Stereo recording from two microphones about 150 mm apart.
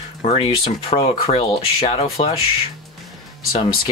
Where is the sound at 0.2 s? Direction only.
40° left (ahead or behind).